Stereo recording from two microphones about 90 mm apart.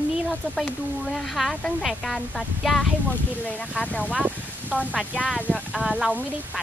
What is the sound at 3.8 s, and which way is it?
Speech, 15° left (ahead or behind).